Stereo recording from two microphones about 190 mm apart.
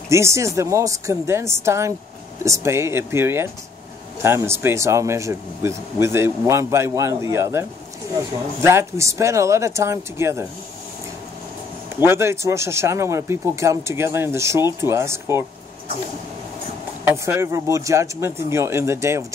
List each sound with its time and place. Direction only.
0.1 s speech: 15° right (ahead or behind)
8.6 s speech: 15° right (ahead or behind)
12.0 s speech: 15° right (ahead or behind)
17.0 s speech: 15° right (ahead or behind)